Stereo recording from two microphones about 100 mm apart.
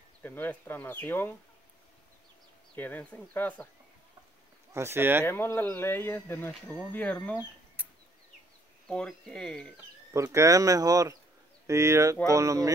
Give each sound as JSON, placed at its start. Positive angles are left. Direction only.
{"t": 0.2, "sound": "speech", "side_deg": 20}
{"t": 2.7, "sound": "speech", "side_deg": 15}
{"t": 4.7, "sound": "speech", "side_deg": -25}
{"t": 5.2, "sound": "speech", "side_deg": 25}
{"t": 7.3, "sound": "a sound", "side_deg": -15}
{"t": 8.8, "sound": "speech", "side_deg": 5}
{"t": 10.1, "sound": "speech", "side_deg": -30}